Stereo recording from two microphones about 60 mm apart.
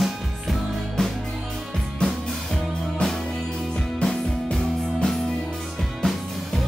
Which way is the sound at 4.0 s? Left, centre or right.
Centre.